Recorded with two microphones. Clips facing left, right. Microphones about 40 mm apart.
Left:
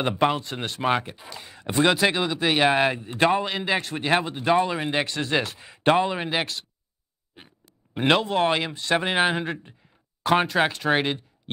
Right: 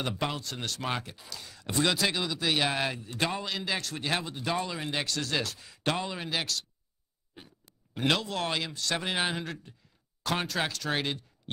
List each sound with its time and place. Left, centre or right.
0.0 s speech: left
7.9 s speech: left